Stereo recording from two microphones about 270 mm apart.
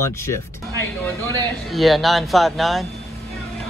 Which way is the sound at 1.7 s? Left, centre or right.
Centre.